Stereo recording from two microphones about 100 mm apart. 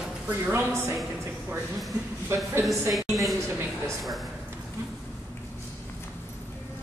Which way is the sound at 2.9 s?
Centre (ahead or behind).